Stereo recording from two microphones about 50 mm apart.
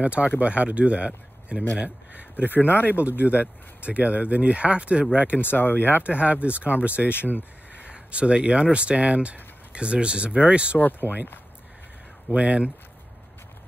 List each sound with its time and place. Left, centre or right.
0.0 s speech: right
2.3 s speech: left
3.3 s speech: right
5.4 s speech: left
6.0 s speech: right
7.1 s speech: left
7.8 s speech: right
10.8 s speech: left
12.3 s speech: right